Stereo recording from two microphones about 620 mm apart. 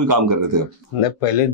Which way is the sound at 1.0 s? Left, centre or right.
Left.